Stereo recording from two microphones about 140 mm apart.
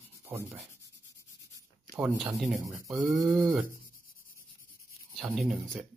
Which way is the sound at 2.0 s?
Centre (ahead or behind).